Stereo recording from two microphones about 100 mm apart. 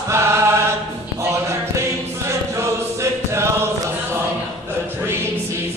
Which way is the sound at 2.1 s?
30° right (ahead or behind).